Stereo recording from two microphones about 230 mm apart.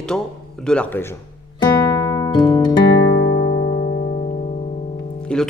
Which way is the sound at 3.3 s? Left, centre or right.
Left.